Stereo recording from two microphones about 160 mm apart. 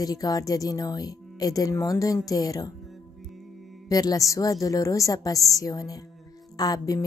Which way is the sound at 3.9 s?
25° left (ahead or behind).